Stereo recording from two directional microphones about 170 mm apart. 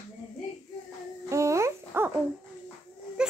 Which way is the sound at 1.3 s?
15° right (ahead or behind).